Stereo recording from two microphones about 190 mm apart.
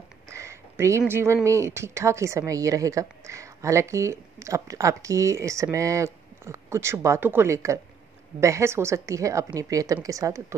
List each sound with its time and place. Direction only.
0.3 s speech: 15° right (ahead or behind)